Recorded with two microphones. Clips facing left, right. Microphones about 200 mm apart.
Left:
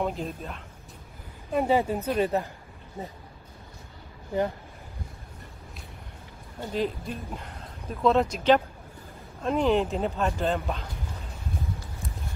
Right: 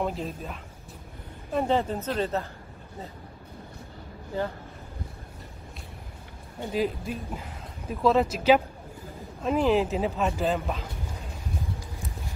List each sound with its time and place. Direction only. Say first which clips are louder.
0.0 s speech: even; centre (ahead or behind); by 3.1 s 15° left (ahead or behind)
6.6 s speech: right 1 dB; 5° right (ahead or behind)